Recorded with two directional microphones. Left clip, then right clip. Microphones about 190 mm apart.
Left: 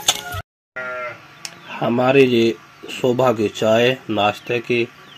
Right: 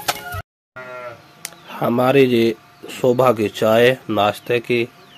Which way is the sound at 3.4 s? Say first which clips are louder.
Right 2 dB; 30° right (ahead or behind).